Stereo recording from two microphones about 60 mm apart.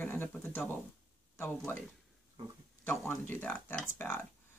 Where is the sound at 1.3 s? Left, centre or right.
Left.